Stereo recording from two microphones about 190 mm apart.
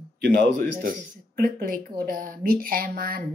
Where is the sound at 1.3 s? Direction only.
50° right (ahead or behind).